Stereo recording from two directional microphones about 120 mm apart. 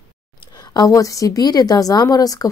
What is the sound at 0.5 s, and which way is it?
A woman's voice, 35° left (ahead or behind).